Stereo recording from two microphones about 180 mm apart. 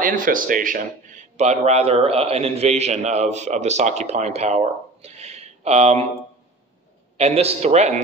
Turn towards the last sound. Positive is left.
turn(degrees=-35)  # may be behind; listen again after turning